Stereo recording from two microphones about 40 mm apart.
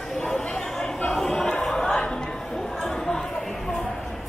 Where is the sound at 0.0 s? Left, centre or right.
Centre.